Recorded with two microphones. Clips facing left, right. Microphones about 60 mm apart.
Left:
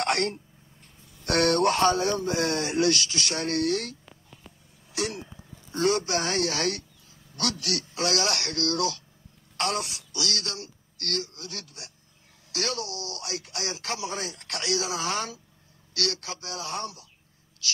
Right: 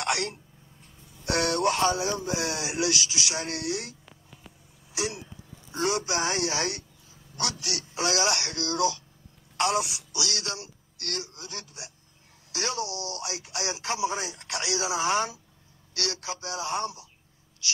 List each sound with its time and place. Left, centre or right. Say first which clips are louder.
1.2 s speech: left 3 dB; left
2.7 s speech: left 4 dB; centre
4.9 s speech: left 1 dB; centre